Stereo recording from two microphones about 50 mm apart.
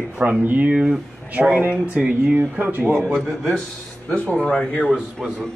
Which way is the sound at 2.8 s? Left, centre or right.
Centre.